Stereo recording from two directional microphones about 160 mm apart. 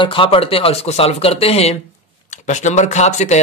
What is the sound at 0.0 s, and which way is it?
Speech, 30° left (ahead or behind).